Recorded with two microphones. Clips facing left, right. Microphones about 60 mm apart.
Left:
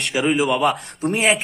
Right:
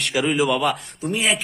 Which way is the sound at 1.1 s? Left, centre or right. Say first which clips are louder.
Left 3 dB; left.